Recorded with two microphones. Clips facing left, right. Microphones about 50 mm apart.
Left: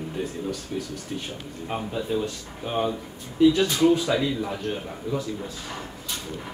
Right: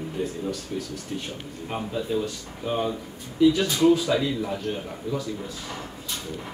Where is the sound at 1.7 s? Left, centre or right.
Centre.